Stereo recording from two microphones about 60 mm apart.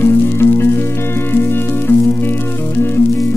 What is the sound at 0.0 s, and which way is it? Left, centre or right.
Music, left.